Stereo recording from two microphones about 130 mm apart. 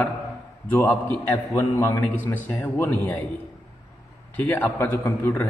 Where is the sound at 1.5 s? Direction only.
25° left (ahead or behind).